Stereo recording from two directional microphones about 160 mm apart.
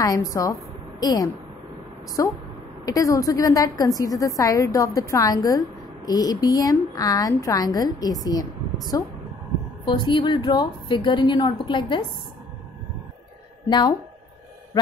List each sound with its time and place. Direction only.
0.0 s a woman's voice: 20° left (ahead or behind)
9.8 s a woman's voice: 25° left (ahead or behind)
13.7 s a woman's voice: 25° left (ahead or behind)